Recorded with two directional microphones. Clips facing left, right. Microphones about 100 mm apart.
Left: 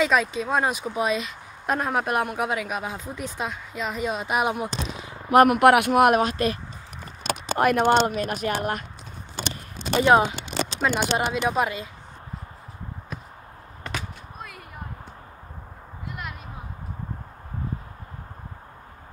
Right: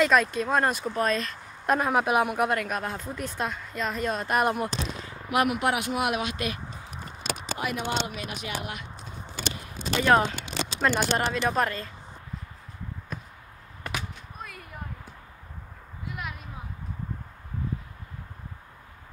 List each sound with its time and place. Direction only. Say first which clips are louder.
0.0 s speech: even; centre (ahead or behind)
5.3 s a woman's voice: left 10 dB; 50° left (ahead or behind)
7.5 s speech: left 12 dB; 50° left (ahead or behind)
7.8 s speech: left 12 dB; 80° left
8.1 s a woman's voice: left 8 dB; 45° left (ahead or behind)
9.9 s speech: left 4 dB; 20° left (ahead or behind)
10.8 s speech: left 1 dB; 5° left (ahead or behind)
13.1 s a sound: left 1 dB; centre (ahead or behind)